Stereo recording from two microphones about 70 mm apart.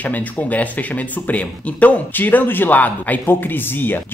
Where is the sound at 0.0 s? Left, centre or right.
Left.